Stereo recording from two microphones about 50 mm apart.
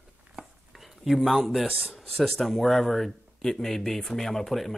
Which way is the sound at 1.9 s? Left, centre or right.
Centre.